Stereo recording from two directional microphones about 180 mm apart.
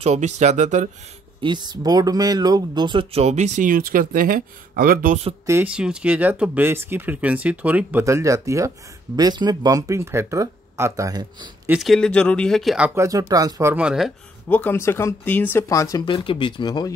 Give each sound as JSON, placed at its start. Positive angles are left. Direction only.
{"t": 0.0, "sound": "speech", "side_deg": -40}
{"t": 1.4, "sound": "speech", "side_deg": -25}
{"t": 5.5, "sound": "speech", "side_deg": -10}
{"t": 11.6, "sound": "speech", "side_deg": -5}
{"t": 14.5, "sound": "speech", "side_deg": 10}